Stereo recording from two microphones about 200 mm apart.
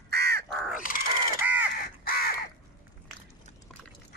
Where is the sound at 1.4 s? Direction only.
10° right (ahead or behind).